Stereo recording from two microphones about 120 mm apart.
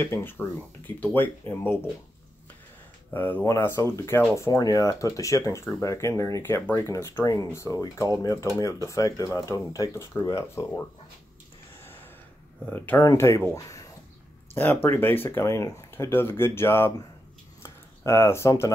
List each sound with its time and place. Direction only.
0.0 s speech: 20° left (ahead or behind)
3.1 s speech: 15° left (ahead or behind)
12.6 s speech: 15° left (ahead or behind)
14.5 s speech: 20° left (ahead or behind)